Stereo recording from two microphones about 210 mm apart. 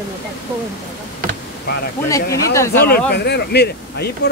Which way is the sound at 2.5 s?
15° left (ahead or behind).